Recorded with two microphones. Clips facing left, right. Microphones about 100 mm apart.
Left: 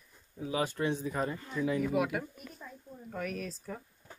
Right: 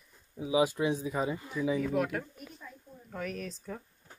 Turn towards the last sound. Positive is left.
turn(degrees=0)  # may be behind; listen again after turning